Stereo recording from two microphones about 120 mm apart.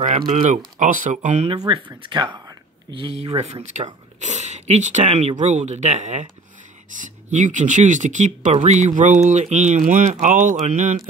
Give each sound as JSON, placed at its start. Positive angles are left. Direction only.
{"t": 0.3, "sound": "speech", "side_deg": -90}
{"t": 1.6, "sound": "speech", "side_deg": -35}
{"t": 2.4, "sound": "a sound", "side_deg": -40}
{"t": 3.2, "sound": "speech", "side_deg": -55}
{"t": 4.2, "sound": "speech", "side_deg": -75}
{"t": 7.0, "sound": "speech", "side_deg": -90}